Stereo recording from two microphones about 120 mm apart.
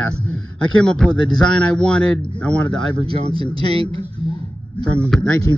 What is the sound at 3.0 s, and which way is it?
Speech, 50° right (ahead or behind).